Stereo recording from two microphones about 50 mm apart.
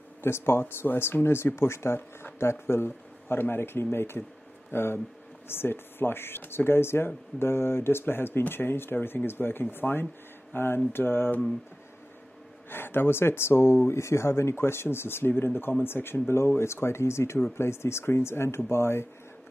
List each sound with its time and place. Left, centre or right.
0.2 s speech: left
12.6 s speech: left